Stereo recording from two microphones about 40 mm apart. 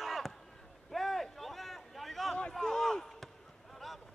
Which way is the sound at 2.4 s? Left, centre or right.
Centre.